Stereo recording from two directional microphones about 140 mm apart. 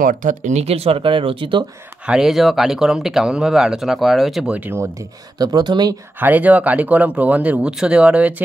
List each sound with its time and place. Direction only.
0.0 s speech: 65° right (ahead or behind); by 1.7 s 35° right (ahead or behind)
2.0 s speech: 5° right (ahead or behind)
5.4 s speech: 30° right (ahead or behind)
6.1 s speech: 15° right (ahead or behind)